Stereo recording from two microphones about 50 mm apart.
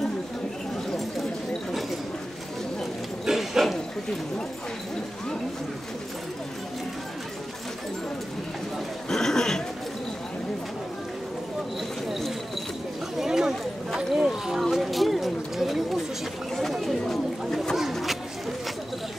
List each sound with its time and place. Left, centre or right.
3.3 s a sound: centre
9.1 s speech: centre
13.2 s speech: centre
17.7 s bird: centre